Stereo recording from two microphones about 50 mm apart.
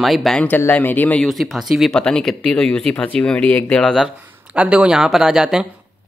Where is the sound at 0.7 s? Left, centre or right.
Left.